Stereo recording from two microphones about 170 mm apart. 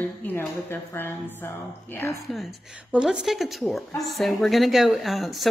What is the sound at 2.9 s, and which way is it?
Speech, 5° right (ahead or behind).